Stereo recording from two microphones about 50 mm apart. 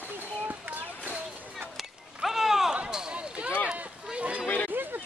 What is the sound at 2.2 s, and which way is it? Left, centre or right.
Run, centre.